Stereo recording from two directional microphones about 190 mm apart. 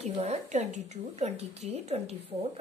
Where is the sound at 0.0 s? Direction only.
35° right (ahead or behind).